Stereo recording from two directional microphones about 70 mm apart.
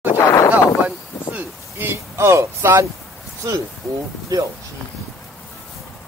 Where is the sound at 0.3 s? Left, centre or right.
Left.